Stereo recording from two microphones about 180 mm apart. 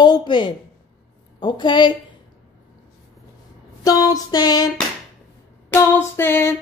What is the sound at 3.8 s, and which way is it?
Speech, 20° left (ahead or behind).